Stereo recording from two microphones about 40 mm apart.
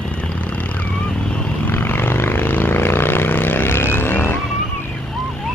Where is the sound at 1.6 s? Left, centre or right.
Left.